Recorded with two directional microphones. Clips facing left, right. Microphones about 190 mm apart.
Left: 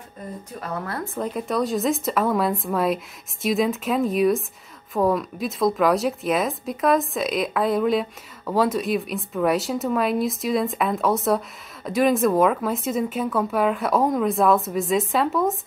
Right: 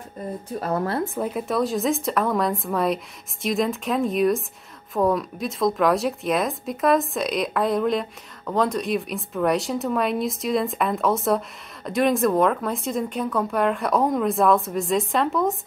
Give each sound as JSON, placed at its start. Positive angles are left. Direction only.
{"t": 0.6, "sound": "speech", "side_deg": -40}
{"t": 1.1, "sound": "a woman's voice", "side_deg": -5}